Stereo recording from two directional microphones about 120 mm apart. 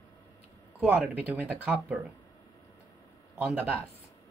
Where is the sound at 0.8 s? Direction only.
15° right (ahead or behind).